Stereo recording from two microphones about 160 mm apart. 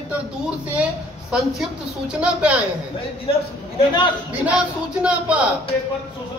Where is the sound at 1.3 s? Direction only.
5° right (ahead or behind).